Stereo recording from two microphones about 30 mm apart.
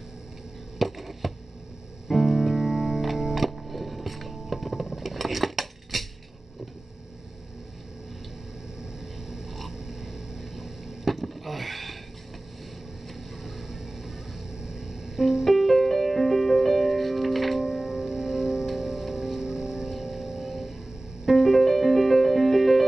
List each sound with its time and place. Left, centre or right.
0.7 s chop: centre
2.0 s music: centre
2.5 s music: centre
3.3 s music: centre
4.8 s a sound: centre
5.1 s cutlery: centre
9.7 s throat clearing: centre
11.1 s a sound: centre
13.1 s vehicle: centre
14.5 s music: right
15.4 s music: centre
17.6 s music: right
19.4 s music: right
21.3 s music: centre